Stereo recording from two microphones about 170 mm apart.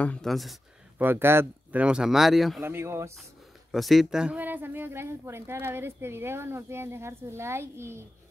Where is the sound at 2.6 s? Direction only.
15° right (ahead or behind).